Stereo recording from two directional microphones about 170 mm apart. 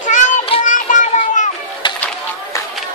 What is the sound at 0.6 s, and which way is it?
Children playing, 50° left (ahead or behind).